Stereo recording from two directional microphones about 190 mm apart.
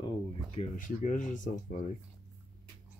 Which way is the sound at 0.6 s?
45° left (ahead or behind).